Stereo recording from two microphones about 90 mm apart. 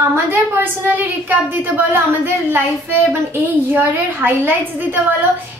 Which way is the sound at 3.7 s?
20° right (ahead or behind).